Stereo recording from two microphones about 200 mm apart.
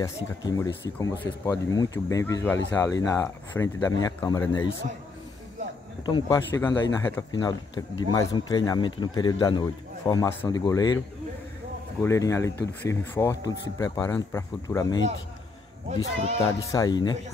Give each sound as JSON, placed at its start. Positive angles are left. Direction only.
{"t": 0.0, "sound": "speech", "side_deg": 15}
{"t": 6.0, "sound": "a man's voice", "side_deg": 20}
{"t": 12.0, "sound": "speech", "side_deg": 15}
{"t": 16.7, "sound": "a man's voice", "side_deg": 20}